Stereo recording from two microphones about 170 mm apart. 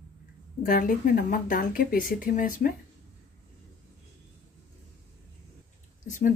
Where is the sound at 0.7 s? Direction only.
55° left (ahead or behind).